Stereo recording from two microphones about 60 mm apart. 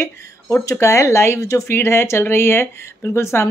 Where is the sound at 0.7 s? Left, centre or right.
Left.